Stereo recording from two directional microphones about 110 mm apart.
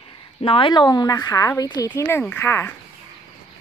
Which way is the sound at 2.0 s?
20° left (ahead or behind).